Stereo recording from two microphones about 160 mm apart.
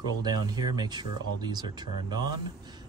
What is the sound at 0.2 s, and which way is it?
Speech, 25° right (ahead or behind).